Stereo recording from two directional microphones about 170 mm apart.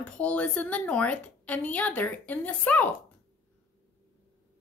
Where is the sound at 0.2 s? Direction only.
10° left (ahead or behind).